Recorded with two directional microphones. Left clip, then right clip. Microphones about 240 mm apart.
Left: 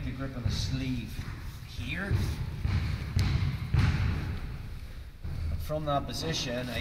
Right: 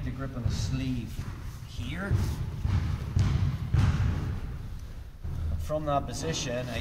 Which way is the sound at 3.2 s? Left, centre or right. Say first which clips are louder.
Even; centre.